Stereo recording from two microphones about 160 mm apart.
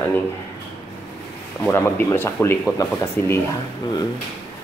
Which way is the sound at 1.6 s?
15° left (ahead or behind).